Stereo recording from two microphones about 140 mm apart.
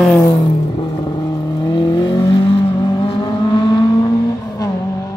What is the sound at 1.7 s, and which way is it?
Vehicle, 30° left (ahead or behind).